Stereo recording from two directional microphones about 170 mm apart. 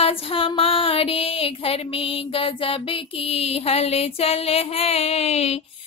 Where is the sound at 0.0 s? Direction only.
35° left (ahead or behind).